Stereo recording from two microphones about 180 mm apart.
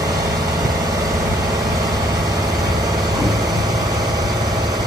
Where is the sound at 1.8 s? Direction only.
20° right (ahead or behind).